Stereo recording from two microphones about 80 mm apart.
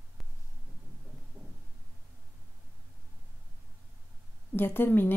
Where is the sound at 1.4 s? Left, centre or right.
Centre.